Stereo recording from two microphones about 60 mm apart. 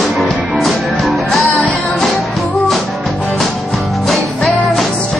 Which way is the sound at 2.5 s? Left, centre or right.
Centre.